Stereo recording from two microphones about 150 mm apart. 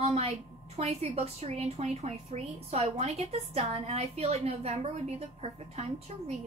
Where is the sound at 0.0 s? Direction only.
45° right (ahead or behind).